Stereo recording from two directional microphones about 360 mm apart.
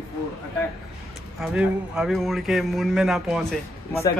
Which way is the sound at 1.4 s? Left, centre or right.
Centre.